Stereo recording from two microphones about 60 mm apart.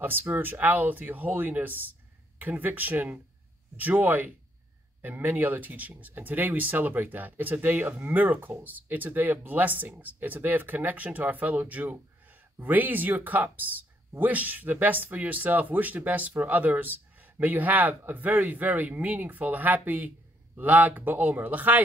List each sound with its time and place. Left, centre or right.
0.0 s speech: right